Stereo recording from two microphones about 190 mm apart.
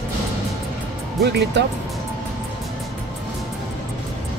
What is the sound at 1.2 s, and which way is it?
Speech, 60° right (ahead or behind).